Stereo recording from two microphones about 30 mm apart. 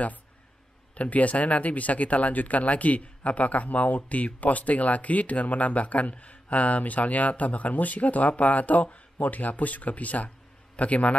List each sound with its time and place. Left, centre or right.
1.1 s a man's voice: left